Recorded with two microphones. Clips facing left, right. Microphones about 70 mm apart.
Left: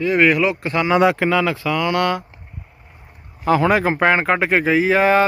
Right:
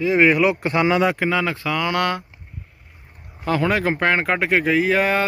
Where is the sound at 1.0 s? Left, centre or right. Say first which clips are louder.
Left 4 dB; left.